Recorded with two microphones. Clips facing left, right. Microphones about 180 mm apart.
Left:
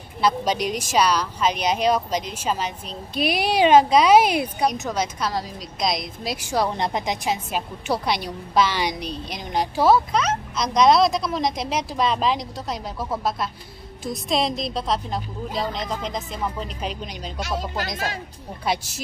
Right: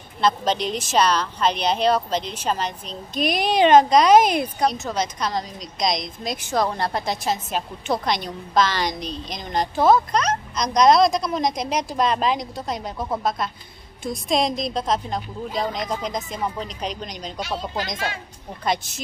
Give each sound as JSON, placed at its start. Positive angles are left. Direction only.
{"t": 0.2, "sound": "a woman's voice", "side_deg": 10}
{"t": 17.9, "sound": "speech", "side_deg": 40}